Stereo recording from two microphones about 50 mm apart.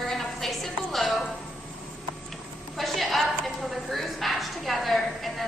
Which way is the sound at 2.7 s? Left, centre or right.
Centre.